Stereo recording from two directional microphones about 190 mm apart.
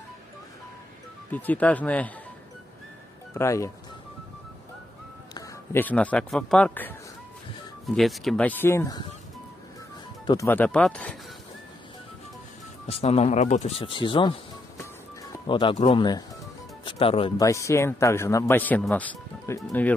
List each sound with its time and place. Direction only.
1.3 s a man's voice: 10° left (ahead or behind)
3.3 s a man's voice: 15° left (ahead or behind)
5.3 s a man's voice: 10° left (ahead or behind)
10.2 s a man's voice: 15° left (ahead or behind)
12.8 s speech: 30° left (ahead or behind)
15.4 s speech: 25° left (ahead or behind)
17.4 s a man's voice: 15° left (ahead or behind)